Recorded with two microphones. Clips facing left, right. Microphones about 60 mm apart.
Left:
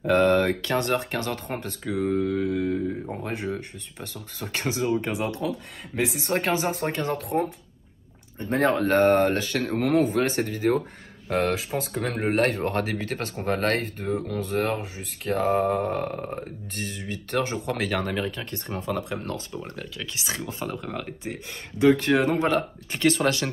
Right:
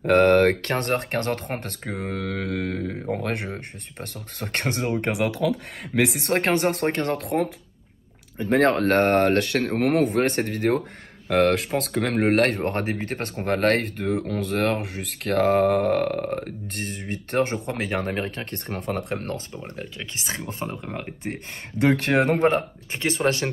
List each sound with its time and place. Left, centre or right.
0.0 s speech: right
2.1 s mantra: right
3.4 s speech: right
5.0 s speech: right
6.3 s speech: right
8.4 s speech: right
12.5 s speech: right
13.7 s speech: right
16.8 s speech: right
17.6 s speech: right
18.3 s speech: right
21.8 s speech: right
22.2 s speech: right
22.6 s speech: right